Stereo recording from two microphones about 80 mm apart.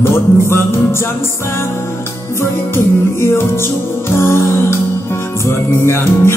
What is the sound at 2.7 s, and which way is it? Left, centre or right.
Music, left.